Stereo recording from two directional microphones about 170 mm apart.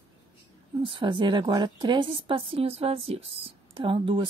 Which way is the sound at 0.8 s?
30° right (ahead or behind).